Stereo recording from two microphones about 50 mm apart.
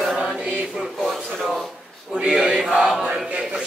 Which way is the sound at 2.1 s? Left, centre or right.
Centre.